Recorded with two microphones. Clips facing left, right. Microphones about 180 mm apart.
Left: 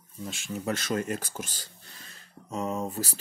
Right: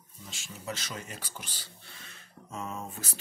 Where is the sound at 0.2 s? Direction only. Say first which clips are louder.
Left 11 dB; 55° left (ahead or behind).